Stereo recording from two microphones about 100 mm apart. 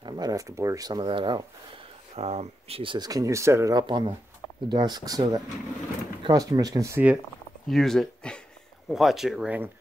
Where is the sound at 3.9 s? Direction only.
55° right (ahead or behind).